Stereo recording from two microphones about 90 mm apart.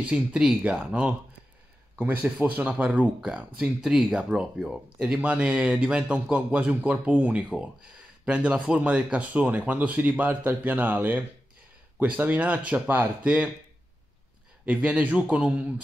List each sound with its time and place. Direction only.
0.0 s a man's voice: 10° right (ahead or behind)
14.7 s speech: 15° right (ahead or behind)